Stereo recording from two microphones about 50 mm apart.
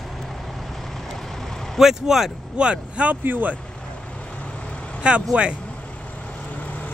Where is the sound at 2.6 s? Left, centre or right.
Right.